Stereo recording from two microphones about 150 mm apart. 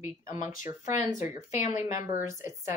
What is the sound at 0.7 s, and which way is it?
Speech, 20° right (ahead or behind).